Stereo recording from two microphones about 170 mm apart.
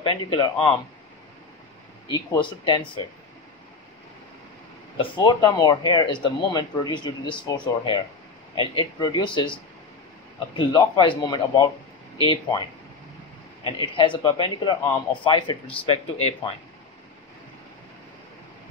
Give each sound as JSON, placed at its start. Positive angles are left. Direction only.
{"t": 0.0, "sound": "speech", "side_deg": 25}
{"t": 2.0, "sound": "speech", "side_deg": 25}
{"t": 4.9, "sound": "speech", "side_deg": 25}
{"t": 10.5, "sound": "speech", "side_deg": 25}
{"t": 13.7, "sound": "speech", "side_deg": 25}